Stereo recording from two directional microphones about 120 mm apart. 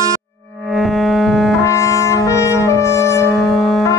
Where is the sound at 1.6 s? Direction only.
25° left (ahead or behind).